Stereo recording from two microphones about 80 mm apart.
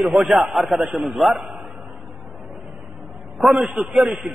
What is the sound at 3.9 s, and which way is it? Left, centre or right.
Speech, centre.